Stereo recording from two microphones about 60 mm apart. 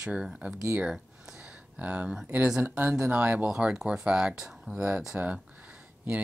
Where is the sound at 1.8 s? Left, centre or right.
Centre.